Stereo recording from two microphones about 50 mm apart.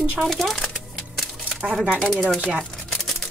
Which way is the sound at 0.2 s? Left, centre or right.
Centre.